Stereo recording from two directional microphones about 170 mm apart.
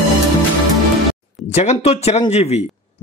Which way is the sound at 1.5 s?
40° left (ahead or behind).